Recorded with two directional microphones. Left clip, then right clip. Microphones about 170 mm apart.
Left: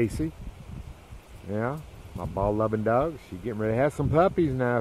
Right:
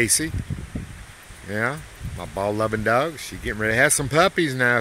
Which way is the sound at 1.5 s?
20° right (ahead or behind).